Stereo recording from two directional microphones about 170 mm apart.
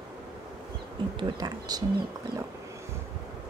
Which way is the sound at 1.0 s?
30° right (ahead or behind).